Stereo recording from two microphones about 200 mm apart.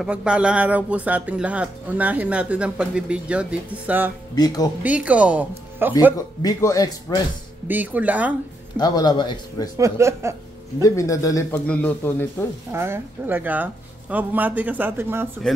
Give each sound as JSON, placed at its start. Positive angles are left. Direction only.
{"t": 0.0, "sound": "speech", "side_deg": -5}
{"t": 4.4, "sound": "a man's voice", "side_deg": 20}
{"t": 4.8, "sound": "speech", "side_deg": -5}
{"t": 6.1, "sound": "a man's voice", "side_deg": 15}
{"t": 7.6, "sound": "speech", "side_deg": -10}
{"t": 8.7, "sound": "a man's voice", "side_deg": 20}
{"t": 9.8, "sound": "speech", "side_deg": -15}
{"t": 10.8, "sound": "a man's voice", "side_deg": 15}
{"t": 12.7, "sound": "speech", "side_deg": -10}